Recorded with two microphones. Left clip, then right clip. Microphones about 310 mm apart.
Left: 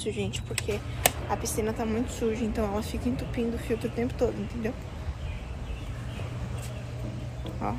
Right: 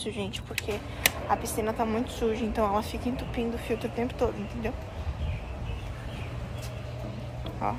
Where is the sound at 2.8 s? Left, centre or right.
Right.